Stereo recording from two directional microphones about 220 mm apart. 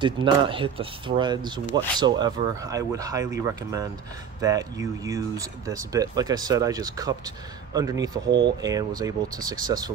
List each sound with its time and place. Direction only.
0.0 s speech: 25° right (ahead or behind)